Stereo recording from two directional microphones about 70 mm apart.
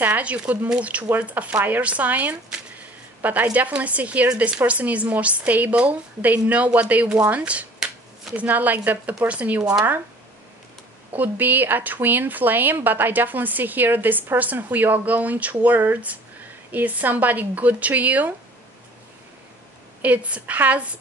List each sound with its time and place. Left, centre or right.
0.0 s a woman's voice: right
11.1 s speech: right
20.0 s speech: right